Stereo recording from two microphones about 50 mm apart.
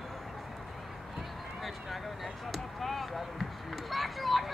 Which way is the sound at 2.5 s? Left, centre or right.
Centre.